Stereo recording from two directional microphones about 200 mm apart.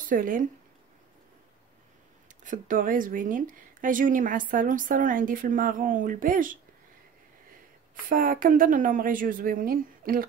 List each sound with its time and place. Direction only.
0.1 s speech: 40° right (ahead or behind)
2.4 s speech: 40° right (ahead or behind)
8.1 s speech: 45° right (ahead or behind)